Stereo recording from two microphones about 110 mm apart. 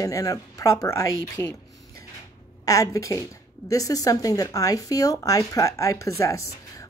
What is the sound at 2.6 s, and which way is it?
Speech, 30° left (ahead or behind).